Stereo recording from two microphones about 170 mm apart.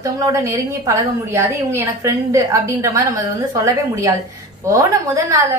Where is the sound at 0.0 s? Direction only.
20° right (ahead or behind).